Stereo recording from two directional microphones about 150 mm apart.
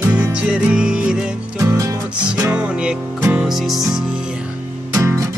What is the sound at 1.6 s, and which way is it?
Music, 20° right (ahead or behind).